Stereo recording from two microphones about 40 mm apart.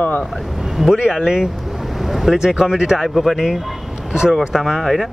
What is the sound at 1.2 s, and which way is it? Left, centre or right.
Speech, centre.